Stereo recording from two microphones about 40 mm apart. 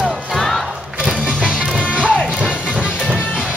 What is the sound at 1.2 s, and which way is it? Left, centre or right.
Music, right.